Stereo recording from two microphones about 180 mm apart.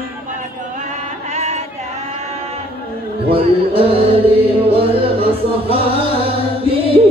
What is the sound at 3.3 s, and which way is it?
Music, 30° right (ahead or behind).